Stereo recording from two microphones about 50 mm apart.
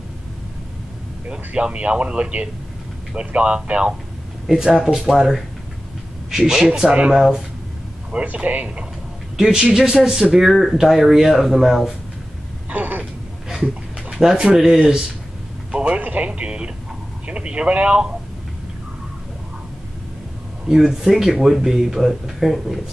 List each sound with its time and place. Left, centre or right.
1.3 s speech: right
4.5 s speech: centre
8.1 s speech: right
10.3 s speech: centre
12.6 s a sound: right
14.1 s speech: centre
20.6 s speech: centre